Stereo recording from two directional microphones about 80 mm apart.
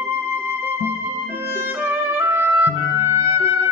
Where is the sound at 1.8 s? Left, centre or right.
Right.